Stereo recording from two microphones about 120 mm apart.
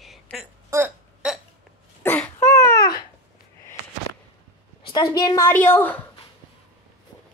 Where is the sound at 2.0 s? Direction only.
15° left (ahead or behind).